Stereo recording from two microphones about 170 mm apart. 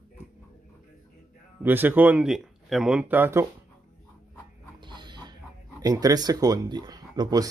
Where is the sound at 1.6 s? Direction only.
10° right (ahead or behind).